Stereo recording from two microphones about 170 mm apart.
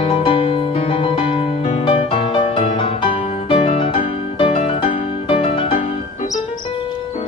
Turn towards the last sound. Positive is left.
turn(degrees=30)  # may be behind; listen again after turning